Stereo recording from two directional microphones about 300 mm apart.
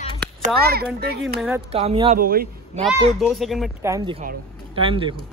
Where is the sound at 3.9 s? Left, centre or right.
Centre.